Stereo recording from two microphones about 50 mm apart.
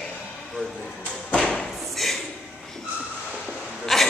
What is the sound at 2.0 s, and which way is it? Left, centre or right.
Speech, centre.